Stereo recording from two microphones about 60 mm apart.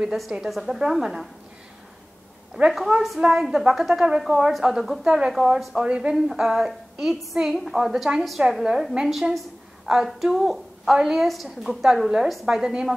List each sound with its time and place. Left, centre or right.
0.0 s a woman's voice: centre
2.5 s a woman's voice: centre
5.9 s a woman's voice: centre